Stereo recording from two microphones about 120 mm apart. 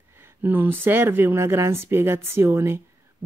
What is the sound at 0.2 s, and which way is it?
Speech, 15° right (ahead or behind).